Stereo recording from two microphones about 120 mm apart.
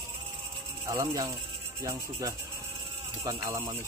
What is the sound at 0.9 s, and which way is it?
Speech, 25° right (ahead or behind).